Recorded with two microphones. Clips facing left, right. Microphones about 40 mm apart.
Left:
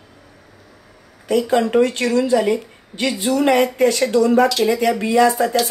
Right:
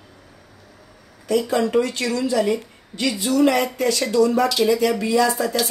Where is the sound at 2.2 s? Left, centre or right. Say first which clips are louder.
Left 3 dB; left.